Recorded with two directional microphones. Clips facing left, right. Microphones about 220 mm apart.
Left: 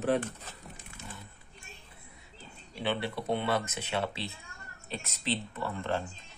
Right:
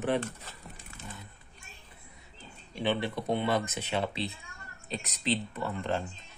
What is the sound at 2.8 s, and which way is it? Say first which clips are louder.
Speech: right 2 dB; 15° right (ahead or behind).